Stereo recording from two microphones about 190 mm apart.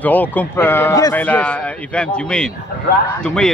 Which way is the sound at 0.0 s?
10° left (ahead or behind).